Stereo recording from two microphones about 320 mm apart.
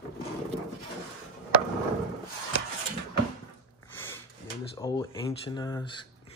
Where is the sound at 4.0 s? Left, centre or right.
Centre.